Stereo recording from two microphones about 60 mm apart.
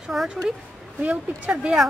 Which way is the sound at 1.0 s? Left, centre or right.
Right.